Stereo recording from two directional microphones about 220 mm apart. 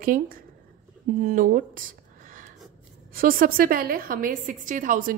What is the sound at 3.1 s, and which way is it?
A woman's voice, 40° right (ahead or behind).